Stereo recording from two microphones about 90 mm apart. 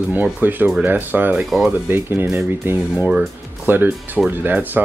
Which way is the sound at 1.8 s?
25° right (ahead or behind).